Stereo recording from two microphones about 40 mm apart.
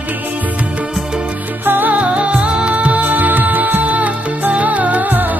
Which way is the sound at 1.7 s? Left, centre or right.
Right.